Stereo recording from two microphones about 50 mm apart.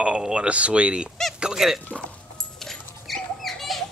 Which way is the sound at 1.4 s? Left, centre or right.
Centre.